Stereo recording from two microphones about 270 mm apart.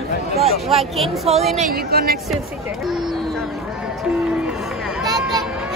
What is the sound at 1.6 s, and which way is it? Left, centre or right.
Speech, right.